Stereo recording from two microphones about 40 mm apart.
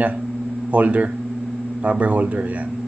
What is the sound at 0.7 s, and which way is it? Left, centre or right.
A man's voice, right.